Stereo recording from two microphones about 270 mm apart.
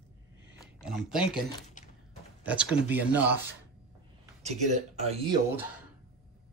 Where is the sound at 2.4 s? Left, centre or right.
Centre.